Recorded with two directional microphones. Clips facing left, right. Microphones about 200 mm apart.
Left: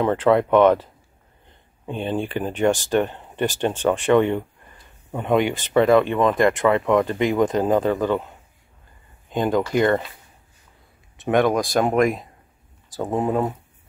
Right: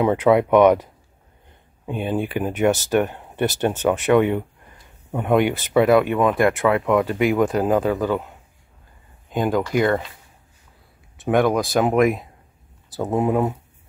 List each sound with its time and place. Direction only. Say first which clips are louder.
0.0 s speech: right 1 dB; 10° right (ahead or behind)
1.9 s speech: right 1 dB; 10° right (ahead or behind)
11.2 s speech: even; centre (ahead or behind)